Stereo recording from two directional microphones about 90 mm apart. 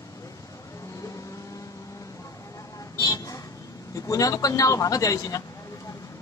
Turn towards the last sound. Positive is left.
turn(degrees=35)  # may be behind; listen again after turning